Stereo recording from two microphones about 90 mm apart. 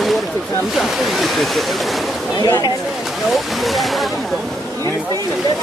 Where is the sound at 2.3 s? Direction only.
50° left (ahead or behind).